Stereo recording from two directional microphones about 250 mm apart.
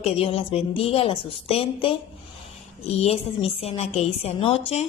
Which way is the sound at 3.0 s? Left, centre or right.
Left.